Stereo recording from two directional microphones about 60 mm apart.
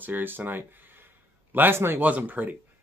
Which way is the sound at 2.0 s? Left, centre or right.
Right.